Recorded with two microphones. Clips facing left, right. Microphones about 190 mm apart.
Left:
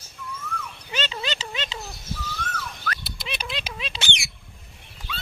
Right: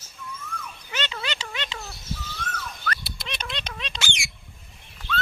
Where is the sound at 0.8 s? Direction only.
20° left (ahead or behind).